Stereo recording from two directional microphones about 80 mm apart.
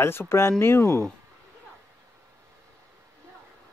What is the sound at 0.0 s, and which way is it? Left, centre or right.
Speech, left.